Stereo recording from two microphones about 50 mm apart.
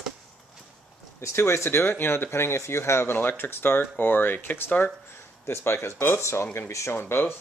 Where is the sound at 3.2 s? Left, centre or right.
Left.